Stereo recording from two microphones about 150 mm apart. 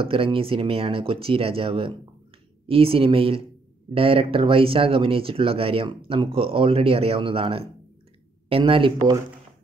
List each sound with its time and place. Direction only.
0.0 s speech: 35° right (ahead or behind)